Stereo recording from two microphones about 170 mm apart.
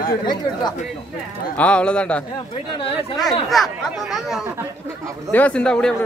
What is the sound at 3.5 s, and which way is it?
Speech, centre (ahead or behind).